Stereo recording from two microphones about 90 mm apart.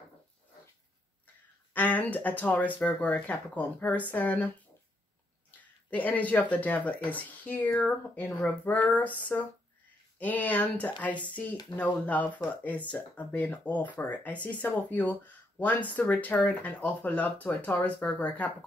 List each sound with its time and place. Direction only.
1.7 s speech: 20° left (ahead or behind)
5.6 s speech: 15° left (ahead or behind)